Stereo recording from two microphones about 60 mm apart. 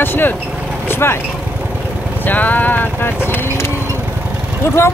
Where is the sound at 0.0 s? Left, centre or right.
Left.